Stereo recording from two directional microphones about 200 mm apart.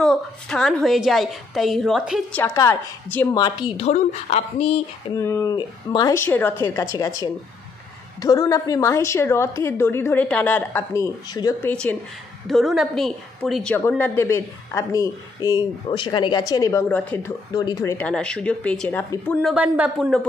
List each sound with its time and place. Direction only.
0.0 s a woman's voice: 5° left (ahead or behind)
2.3 s a woman's voice: 15° left (ahead or behind)
3.7 s speech: 30° left (ahead or behind)
5.1 s a woman's voice: 15° left (ahead or behind)
11.7 s a woman's voice: 5° left (ahead or behind)
19.5 s a woman's voice: 5° right (ahead or behind)